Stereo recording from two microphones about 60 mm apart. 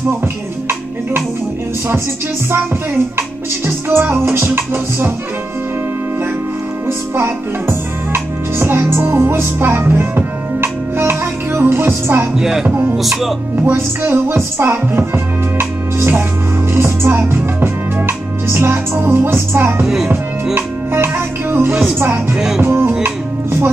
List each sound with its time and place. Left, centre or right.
3.2 s music: right
6.9 s music: right
12.4 s speech: centre
12.6 s music: right
12.9 s music: centre
13.7 s music: right